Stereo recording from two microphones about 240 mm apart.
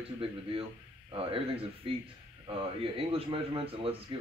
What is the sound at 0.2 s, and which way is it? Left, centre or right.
A man's voice, right.